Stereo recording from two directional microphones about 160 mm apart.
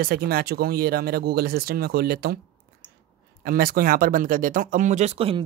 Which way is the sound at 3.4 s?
65° right (ahead or behind).